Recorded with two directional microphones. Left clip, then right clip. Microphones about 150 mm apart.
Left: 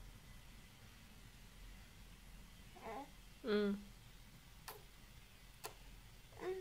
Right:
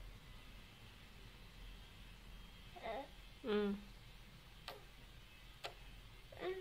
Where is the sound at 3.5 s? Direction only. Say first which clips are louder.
Left 1 dB; 15° left (ahead or behind).